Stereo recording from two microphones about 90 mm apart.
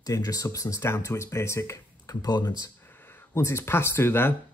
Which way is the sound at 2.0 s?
45° left (ahead or behind).